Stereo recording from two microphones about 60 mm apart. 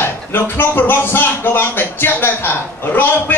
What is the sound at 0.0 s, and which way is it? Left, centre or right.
A man's voice, left.